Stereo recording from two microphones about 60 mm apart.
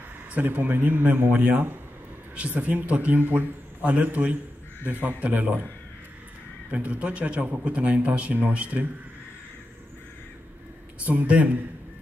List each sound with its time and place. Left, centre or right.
0.3 s a man's voice: right
6.7 s a man's voice: right
11.1 s a man's voice: right